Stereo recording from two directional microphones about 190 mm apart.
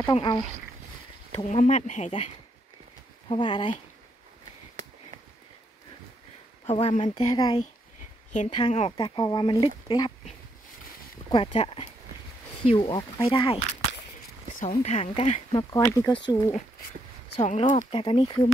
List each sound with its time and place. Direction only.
0.1 s speech: 25° left (ahead or behind)
1.3 s speech: 35° left (ahead or behind)
3.3 s speech: 25° left (ahead or behind)
6.7 s speech: 25° left (ahead or behind)
11.2 s speech: 30° left (ahead or behind)
14.5 s speech: 40° left (ahead or behind)
15.5 s speech: 15° left (ahead or behind)
17.4 s speech: 40° left (ahead or behind)
17.9 s speech: 25° left (ahead or behind)